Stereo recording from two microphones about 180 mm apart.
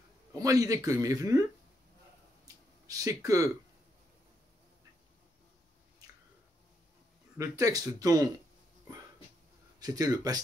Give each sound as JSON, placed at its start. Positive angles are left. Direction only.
{"t": 0.4, "sound": "speech", "side_deg": -20}
{"t": 2.4, "sound": "a sound", "side_deg": -20}
{"t": 7.3, "sound": "speech", "side_deg": -20}
{"t": 9.8, "sound": "speech", "side_deg": -20}